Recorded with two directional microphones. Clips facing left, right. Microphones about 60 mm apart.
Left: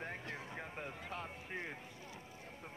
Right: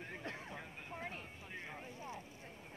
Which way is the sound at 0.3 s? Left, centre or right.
Left.